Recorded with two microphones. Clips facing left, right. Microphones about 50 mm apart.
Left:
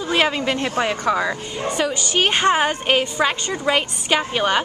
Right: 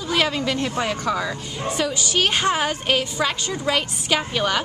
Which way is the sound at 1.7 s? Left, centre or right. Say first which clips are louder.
Left 2 dB; centre.